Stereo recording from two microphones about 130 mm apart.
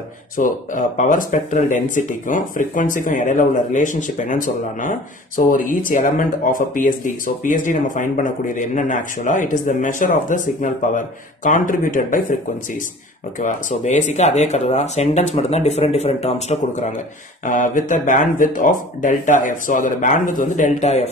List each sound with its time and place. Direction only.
0.4 s speech: 80° left
13.4 s speech: 75° left (ahead or behind)
17.5 s speech: 90° left; by 21.1 s 60° left (ahead or behind)